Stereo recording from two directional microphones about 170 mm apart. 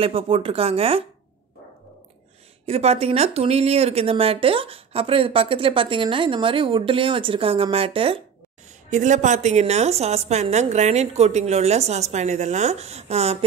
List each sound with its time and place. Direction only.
0.0 s speech: 35° right (ahead or behind)
2.6 s speech: 35° right (ahead or behind)
8.9 s speech: 45° right (ahead or behind)